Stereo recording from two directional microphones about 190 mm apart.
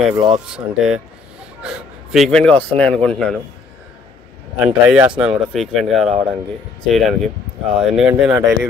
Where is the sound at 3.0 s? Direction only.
5° left (ahead or behind).